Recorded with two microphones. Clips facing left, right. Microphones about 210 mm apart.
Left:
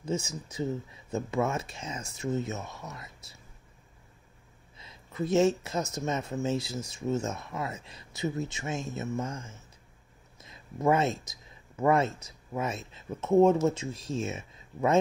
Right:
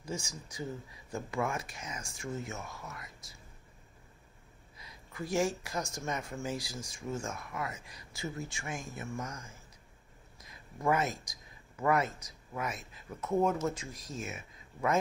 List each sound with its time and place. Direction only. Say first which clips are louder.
0.0 s speech: left 8 dB; 25° left (ahead or behind)
4.7 s speech: left 8 dB; 25° left (ahead or behind)